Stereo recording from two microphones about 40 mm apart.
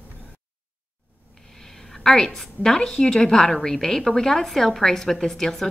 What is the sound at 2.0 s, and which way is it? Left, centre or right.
A woman's voice, centre.